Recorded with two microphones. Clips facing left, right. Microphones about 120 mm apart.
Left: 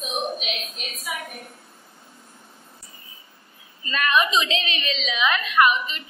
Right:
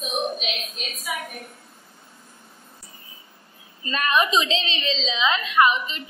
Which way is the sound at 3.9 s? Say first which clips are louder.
Even; 35° right (ahead or behind).